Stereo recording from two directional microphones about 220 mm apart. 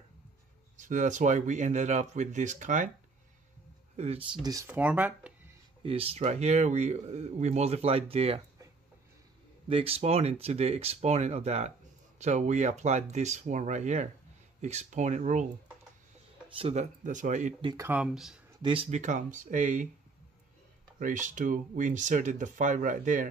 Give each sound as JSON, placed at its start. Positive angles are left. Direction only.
{"t": 0.7, "sound": "speech", "side_deg": -35}
{"t": 3.9, "sound": "speech", "side_deg": -30}
{"t": 4.3, "sound": "speech", "side_deg": -15}
{"t": 5.8, "sound": "speech", "side_deg": -25}
{"t": 9.7, "sound": "speech", "side_deg": -25}
{"t": 16.4, "sound": "speech", "side_deg": -25}
{"t": 17.6, "sound": "speech", "side_deg": -10}
{"t": 18.6, "sound": "speech", "side_deg": -25}
{"t": 21.0, "sound": "speech", "side_deg": -35}